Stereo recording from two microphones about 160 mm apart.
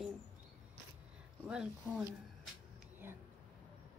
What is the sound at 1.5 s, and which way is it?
Speech, 5° right (ahead or behind).